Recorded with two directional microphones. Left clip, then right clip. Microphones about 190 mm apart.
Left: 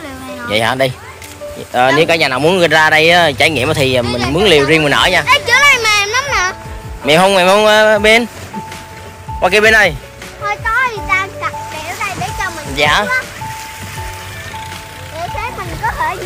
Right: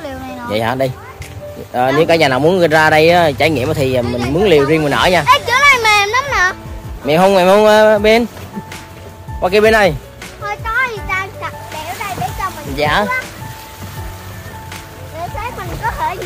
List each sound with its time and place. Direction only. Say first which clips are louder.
0.5 s speech: left 3 dB; 10° right (ahead or behind)
2.7 s speech: left 1 dB; 5° right (ahead or behind)
5.2 s a sound: left 1 dB; 30° right (ahead or behind); by 6.3 s 15° right (ahead or behind)
7.1 s speech: left 1 dB; 5° right (ahead or behind)
9.4 s speech: left 2 dB; 5° right (ahead or behind)
10.4 s music: left 3 dB; 35° left (ahead or behind)
12.7 s speech: left 3 dB; 15° right (ahead or behind)
15.8 s a sound: left 2 dB; 35° left (ahead or behind)